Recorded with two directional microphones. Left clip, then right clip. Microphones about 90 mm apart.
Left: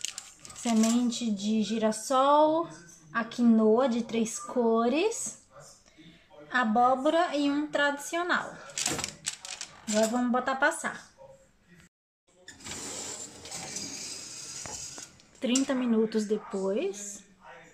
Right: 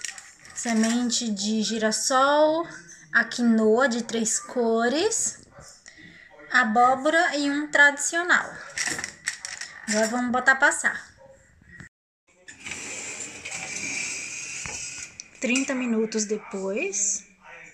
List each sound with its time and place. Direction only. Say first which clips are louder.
0.6 s speech: right 2 dB; centre (ahead or behind)
6.5 s a woman's voice: right 5 dB; 5° right (ahead or behind)
12.7 s music: right 4 dB; 5° left (ahead or behind)
13.9 s a sound: right 10 dB; 15° left (ahead or behind)
15.6 s speech: right 2 dB; centre (ahead or behind)
16.9 s a woman's voice: right 14 dB; 65° right (ahead or behind)